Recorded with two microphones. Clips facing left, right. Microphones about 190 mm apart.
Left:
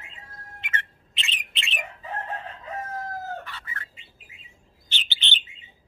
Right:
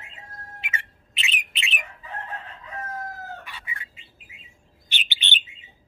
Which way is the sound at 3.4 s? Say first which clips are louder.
Left 1 dB; 10° right (ahead or behind).